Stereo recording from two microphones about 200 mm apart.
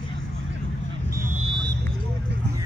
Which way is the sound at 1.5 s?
65° right (ahead or behind).